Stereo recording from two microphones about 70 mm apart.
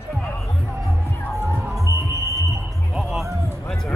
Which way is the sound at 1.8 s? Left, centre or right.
Right.